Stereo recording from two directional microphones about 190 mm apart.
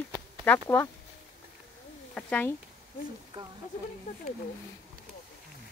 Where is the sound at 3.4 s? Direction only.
25° right (ahead or behind).